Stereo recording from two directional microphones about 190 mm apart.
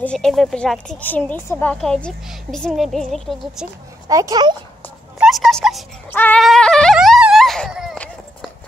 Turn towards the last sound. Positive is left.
turn(degrees=-5)  # may be behind; listen again after turning